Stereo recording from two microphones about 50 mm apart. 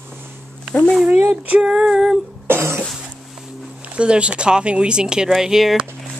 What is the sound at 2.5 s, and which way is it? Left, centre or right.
Cough, right.